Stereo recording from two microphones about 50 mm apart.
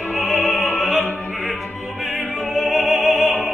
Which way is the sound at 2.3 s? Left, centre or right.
Centre.